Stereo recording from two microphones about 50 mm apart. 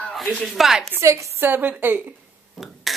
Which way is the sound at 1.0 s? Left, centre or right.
Right.